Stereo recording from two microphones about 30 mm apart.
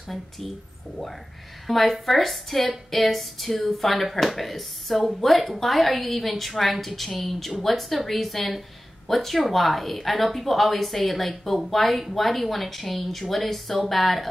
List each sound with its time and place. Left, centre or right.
1.7 s speech: centre